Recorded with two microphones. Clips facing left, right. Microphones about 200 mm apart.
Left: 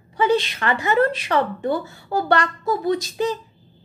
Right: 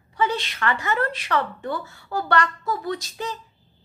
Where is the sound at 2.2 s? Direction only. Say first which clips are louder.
Left 2 dB; 15° left (ahead or behind).